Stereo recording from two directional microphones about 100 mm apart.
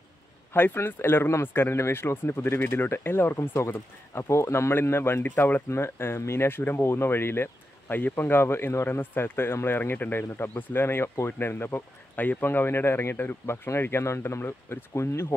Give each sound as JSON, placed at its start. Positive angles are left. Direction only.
{"t": 0.5, "sound": "speech", "side_deg": 20}